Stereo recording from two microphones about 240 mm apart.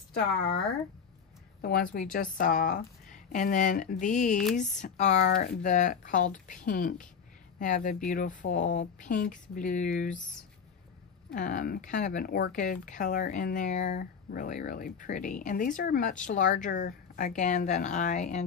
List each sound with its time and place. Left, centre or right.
1.6 s speech: left
11.3 s speech: left